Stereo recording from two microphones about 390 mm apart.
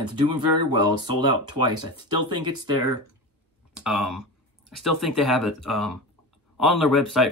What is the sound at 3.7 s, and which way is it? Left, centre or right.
Speech, centre.